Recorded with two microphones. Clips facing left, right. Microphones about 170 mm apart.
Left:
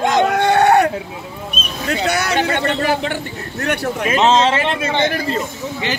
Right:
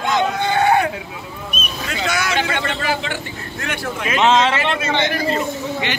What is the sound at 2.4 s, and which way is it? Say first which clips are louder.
Speech: left 4 dB; 40° left (ahead or behind).